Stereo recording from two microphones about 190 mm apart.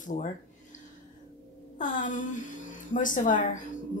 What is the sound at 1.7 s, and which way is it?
A woman's voice, 40° left (ahead or behind).